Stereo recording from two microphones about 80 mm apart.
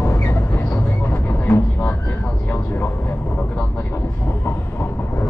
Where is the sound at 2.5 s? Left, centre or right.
Left.